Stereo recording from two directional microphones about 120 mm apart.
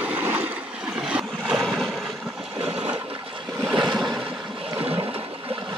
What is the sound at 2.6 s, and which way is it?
Toilet flush, 10° right (ahead or behind).